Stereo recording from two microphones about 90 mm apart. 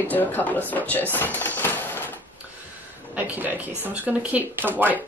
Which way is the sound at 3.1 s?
20° right (ahead or behind).